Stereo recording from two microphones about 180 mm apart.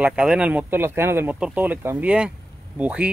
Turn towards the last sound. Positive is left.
turn(degrees=-5)  # may be behind; listen again after turning